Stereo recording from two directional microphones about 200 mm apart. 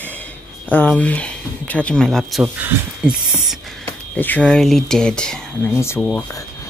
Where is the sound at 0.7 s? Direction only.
5° left (ahead or behind).